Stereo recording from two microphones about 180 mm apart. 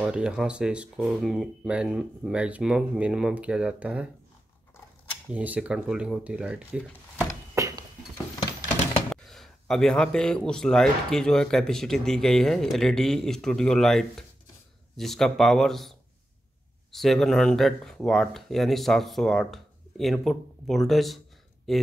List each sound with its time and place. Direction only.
0.0 s speech: 5° right (ahead or behind)
5.3 s speech: 5° right (ahead or behind)
7.5 s a sound: 15° right (ahead or behind)
9.1 s speech: centre (ahead or behind)